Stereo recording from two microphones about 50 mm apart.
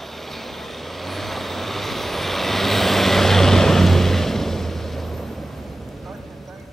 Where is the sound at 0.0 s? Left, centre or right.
Centre.